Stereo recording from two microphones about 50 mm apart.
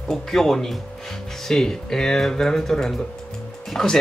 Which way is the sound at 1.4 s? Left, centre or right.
Centre.